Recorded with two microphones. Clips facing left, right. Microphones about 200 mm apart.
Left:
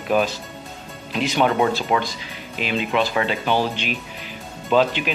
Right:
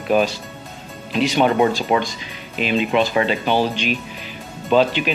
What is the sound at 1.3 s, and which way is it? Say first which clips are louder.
Speech: right 2 dB; 15° right (ahead or behind).